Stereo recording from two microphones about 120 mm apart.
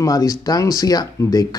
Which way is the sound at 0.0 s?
30° left (ahead or behind).